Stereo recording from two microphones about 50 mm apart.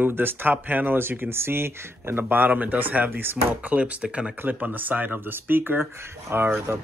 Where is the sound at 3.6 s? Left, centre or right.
Right.